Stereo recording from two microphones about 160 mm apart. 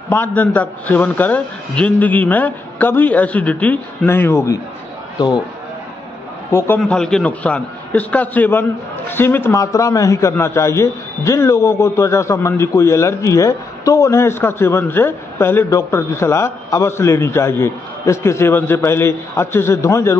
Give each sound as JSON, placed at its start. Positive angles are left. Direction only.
{"t": 0.1, "sound": "a man's voice", "side_deg": 10}
{"t": 6.8, "sound": "a man's voice", "side_deg": 5}